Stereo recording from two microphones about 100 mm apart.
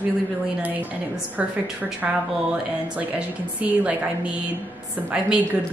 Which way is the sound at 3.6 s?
15° right (ahead or behind).